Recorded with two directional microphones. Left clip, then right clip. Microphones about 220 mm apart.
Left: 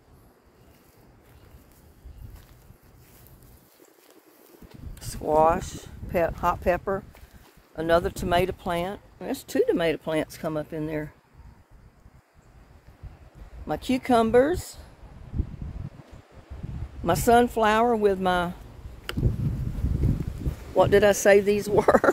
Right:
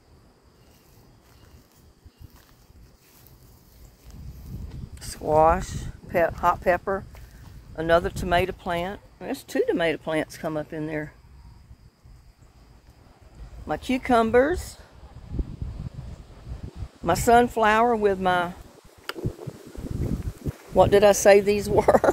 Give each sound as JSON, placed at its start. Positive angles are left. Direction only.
{"t": 4.9, "sound": "speech", "side_deg": 10}
{"t": 13.7, "sound": "speech", "side_deg": 15}
{"t": 17.0, "sound": "speech", "side_deg": 10}
{"t": 20.7, "sound": "speech", "side_deg": 5}